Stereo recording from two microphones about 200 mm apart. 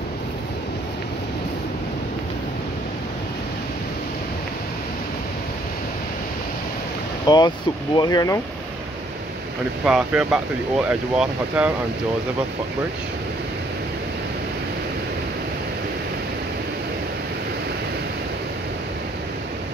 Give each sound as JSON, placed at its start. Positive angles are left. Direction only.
{"t": 7.2, "sound": "speech", "side_deg": 20}
{"t": 9.8, "sound": "speech", "side_deg": -5}